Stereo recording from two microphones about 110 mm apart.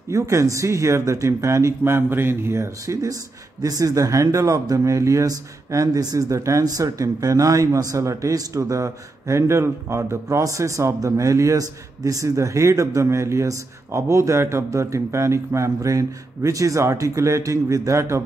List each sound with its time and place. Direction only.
0.1 s speech: 30° right (ahead or behind)